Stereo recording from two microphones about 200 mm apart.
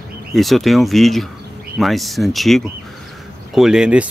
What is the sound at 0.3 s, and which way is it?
Speech, centre (ahead or behind).